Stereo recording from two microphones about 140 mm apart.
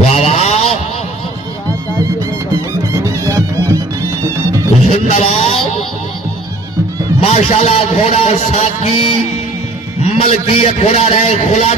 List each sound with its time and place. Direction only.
0.1 s vehicle: 45° left (ahead or behind)
2.5 s music: 25° right (ahead or behind)
4.8 s a sound: 45° left (ahead or behind)
7.2 s a man's voice: 45° left (ahead or behind)